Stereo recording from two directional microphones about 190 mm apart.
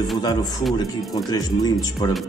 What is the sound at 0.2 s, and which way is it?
A man's voice, 20° left (ahead or behind).